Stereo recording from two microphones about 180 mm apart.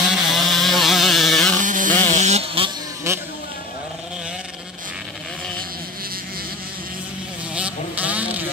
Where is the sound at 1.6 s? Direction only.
45° right (ahead or behind).